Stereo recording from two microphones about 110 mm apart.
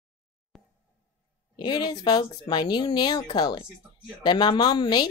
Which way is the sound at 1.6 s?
40° left (ahead or behind).